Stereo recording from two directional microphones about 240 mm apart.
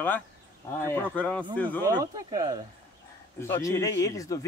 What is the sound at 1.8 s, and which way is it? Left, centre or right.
Speech, centre.